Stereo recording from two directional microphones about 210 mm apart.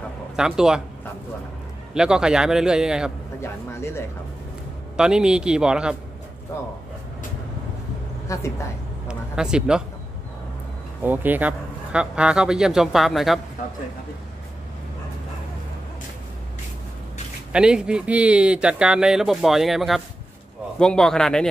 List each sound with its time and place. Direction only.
0.4 s speech: 5° right (ahead or behind)
2.0 s speech: 5° right (ahead or behind)
3.3 s speech: 10° left (ahead or behind)
4.9 s speech: 5° right (ahead or behind)
8.3 s speech: 15° left (ahead or behind)
9.0 s a sound: 5° right (ahead or behind)
11.0 s speech: 10° right (ahead or behind)
17.5 s speech: 5° right (ahead or behind)